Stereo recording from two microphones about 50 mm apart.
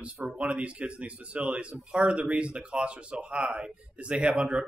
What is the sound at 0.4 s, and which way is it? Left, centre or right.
Speech, right.